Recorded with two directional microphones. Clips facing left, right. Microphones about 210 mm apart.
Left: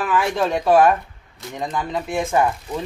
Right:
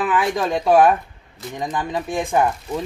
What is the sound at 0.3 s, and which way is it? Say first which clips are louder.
Speech: left 1 dB; 15° right (ahead or behind).